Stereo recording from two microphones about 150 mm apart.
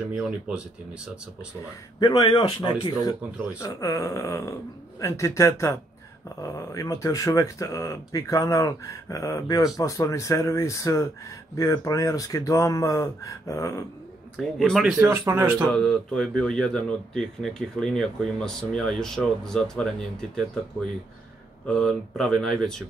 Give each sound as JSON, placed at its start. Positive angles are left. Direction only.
{"t": 0.1, "sound": "speech", "side_deg": -5}
{"t": 2.0, "sound": "speech", "side_deg": 25}
{"t": 14.3, "sound": "speech", "side_deg": 5}
{"t": 15.0, "sound": "speech", "side_deg": -20}
{"t": 15.7, "sound": "speech", "side_deg": 5}
{"t": 21.6, "sound": "speech", "side_deg": 5}